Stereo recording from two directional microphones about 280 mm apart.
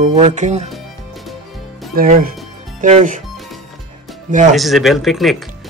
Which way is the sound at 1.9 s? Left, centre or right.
Right.